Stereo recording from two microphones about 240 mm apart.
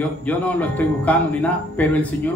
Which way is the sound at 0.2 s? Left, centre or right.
Centre.